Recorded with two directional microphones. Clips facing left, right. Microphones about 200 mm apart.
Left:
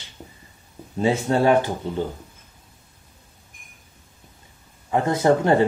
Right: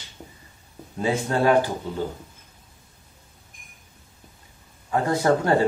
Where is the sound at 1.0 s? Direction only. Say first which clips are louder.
Left 3 dB; 25° left (ahead or behind).